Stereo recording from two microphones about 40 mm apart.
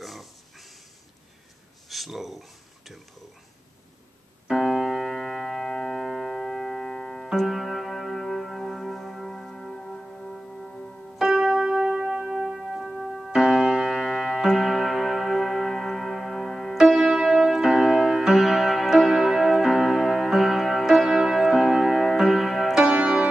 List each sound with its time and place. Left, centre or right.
0.0 s dog: centre
1.9 s a sound: centre
4.7 s keyboard: centre
5.1 s music: centre
7.3 s music: centre
11.1 s keyboard: centre
11.6 s music: centre
13.4 s music: centre
22.8 s music: right